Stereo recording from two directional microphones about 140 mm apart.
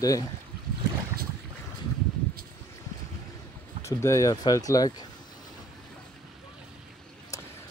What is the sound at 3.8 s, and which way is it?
Speech, 20° left (ahead or behind).